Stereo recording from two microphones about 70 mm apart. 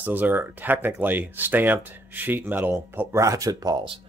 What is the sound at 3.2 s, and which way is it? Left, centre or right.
Speech, right.